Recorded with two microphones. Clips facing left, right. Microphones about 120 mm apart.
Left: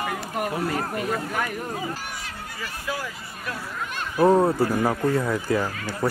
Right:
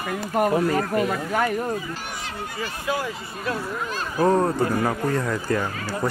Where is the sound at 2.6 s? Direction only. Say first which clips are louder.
Right 4 dB; 25° right (ahead or behind).